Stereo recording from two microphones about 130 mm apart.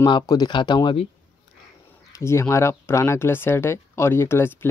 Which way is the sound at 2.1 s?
20° left (ahead or behind).